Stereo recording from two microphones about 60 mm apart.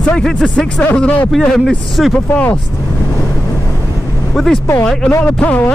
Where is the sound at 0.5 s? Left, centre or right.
Left.